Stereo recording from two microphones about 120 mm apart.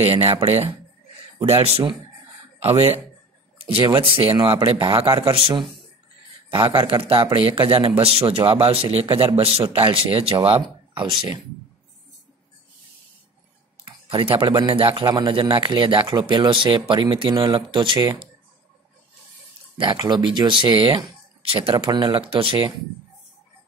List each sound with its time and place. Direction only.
0.0 s speech: 55° right (ahead or behind)
1.7 s speech: 45° right (ahead or behind)
4.0 s speech: 50° right (ahead or behind)
6.5 s speech: 45° right (ahead or behind)
11.0 s speech: 40° right (ahead or behind)
14.0 s speech: 50° right (ahead or behind)
15.0 s speech: 40° right (ahead or behind)
19.8 s speech: 40° right (ahead or behind)
21.7 s speech: 35° right (ahead or behind)